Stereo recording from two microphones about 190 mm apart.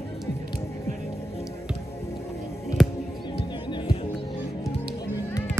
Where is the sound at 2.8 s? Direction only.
Centre (ahead or behind).